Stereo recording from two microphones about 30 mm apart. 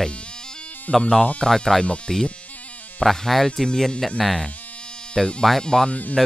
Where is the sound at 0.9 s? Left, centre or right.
Left.